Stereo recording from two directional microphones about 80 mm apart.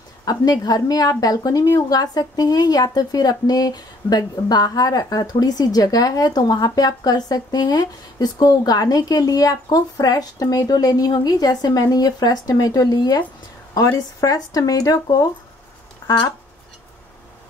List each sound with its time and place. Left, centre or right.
0.2 s a woman's voice: left